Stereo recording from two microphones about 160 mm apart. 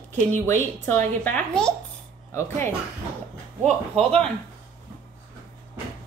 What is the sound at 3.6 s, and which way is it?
Speech, 40° right (ahead or behind).